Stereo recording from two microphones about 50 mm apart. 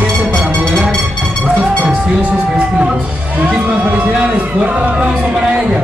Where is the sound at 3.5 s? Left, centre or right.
Right.